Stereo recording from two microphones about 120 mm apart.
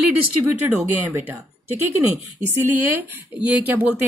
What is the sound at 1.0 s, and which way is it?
Speech, 20° right (ahead or behind).